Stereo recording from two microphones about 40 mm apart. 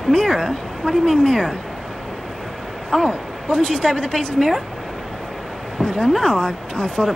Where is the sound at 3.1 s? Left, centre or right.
Centre.